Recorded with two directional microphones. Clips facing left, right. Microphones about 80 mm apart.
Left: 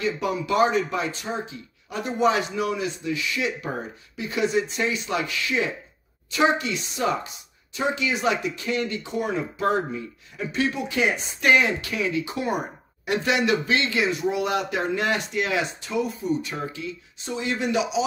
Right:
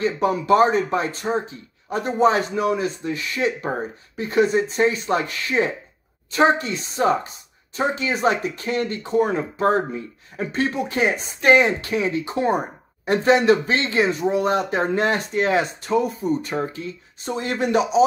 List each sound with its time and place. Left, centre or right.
0.0 s speech: right